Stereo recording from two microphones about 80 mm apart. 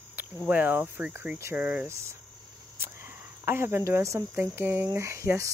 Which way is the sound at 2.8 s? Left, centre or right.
Right.